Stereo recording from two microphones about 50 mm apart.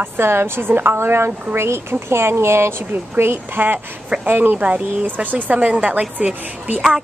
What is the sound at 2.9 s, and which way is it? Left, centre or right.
A woman's voice, right.